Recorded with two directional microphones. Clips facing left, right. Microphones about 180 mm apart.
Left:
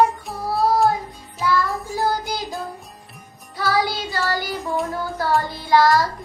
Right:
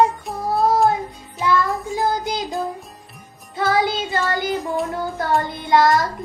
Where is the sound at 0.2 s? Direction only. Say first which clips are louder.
Right 2 dB; centre (ahead or behind).